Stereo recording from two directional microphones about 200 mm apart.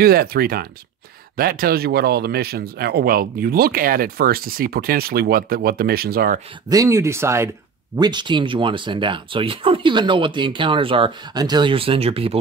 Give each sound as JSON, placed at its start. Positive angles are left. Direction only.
{"t": 0.0, "sound": "speech", "side_deg": -50}
{"t": 6.7, "sound": "speech", "side_deg": -15}